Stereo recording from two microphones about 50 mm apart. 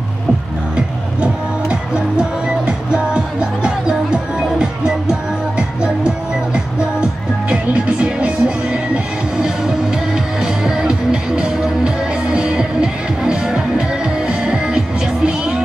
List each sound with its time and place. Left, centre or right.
1.2 s music: right